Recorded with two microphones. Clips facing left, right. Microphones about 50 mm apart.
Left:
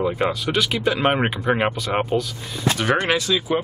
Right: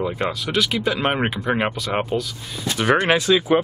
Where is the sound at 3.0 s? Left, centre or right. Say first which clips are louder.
Right 3 dB; right.